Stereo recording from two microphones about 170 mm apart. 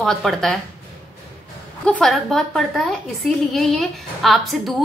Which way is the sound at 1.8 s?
5° left (ahead or behind).